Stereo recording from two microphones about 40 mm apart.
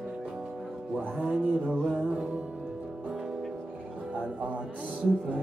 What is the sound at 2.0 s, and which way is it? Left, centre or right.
Music, right.